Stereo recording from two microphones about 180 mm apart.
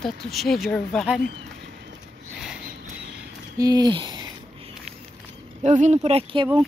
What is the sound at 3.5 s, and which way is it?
Speech, 20° right (ahead or behind).